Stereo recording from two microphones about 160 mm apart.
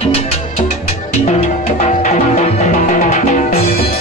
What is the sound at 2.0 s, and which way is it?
Music, 45° left (ahead or behind).